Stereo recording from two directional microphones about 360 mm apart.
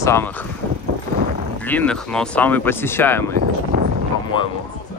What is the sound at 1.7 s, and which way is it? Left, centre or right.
Speech, centre.